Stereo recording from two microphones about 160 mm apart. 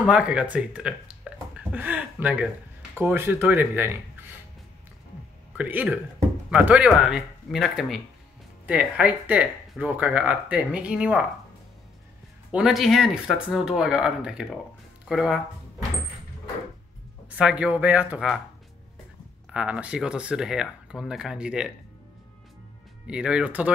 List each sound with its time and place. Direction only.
0.0 s speech: 5° right (ahead or behind)
5.6 s speech: 10° right (ahead or behind)
12.4 s speech: 5° right (ahead or behind)
17.4 s speech: 5° right (ahead or behind)
19.5 s speech: 5° right (ahead or behind)
23.0 s speech: 5° right (ahead or behind)